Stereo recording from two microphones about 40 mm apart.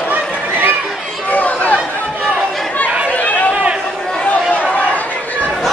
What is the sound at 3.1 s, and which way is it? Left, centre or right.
Chatter, left.